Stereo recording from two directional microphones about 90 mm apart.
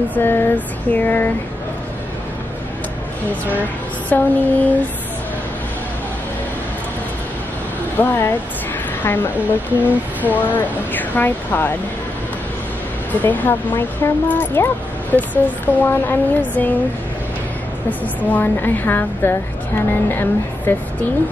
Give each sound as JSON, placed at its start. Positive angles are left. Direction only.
{"t": 0.1, "sound": "speech", "side_deg": 25}
{"t": 4.1, "sound": "a sound", "side_deg": 20}
{"t": 8.0, "sound": "speech", "side_deg": 25}
{"t": 13.2, "sound": "speech", "side_deg": 20}
{"t": 17.8, "sound": "speech", "side_deg": 20}